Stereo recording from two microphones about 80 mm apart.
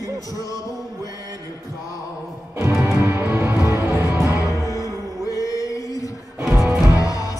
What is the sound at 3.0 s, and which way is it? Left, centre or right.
Music, right.